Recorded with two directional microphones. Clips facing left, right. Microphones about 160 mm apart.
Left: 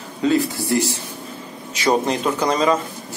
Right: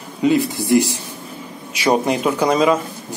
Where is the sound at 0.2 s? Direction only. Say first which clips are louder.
Right 2 dB; 15° right (ahead or behind).